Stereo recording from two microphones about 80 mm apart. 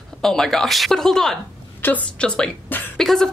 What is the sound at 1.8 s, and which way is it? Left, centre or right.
A woman's voice, centre.